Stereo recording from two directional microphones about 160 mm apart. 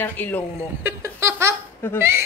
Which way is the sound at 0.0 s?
10° left (ahead or behind).